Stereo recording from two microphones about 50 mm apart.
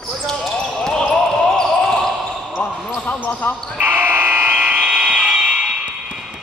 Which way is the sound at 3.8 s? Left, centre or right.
Right.